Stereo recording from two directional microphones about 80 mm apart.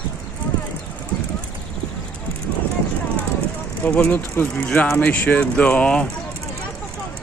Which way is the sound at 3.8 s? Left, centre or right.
Centre.